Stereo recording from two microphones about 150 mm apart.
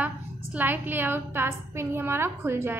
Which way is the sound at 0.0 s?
10° right (ahead or behind).